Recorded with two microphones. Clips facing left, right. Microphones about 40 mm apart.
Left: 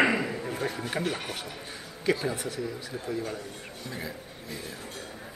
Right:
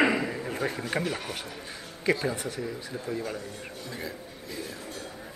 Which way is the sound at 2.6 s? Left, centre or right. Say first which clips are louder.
Even; centre.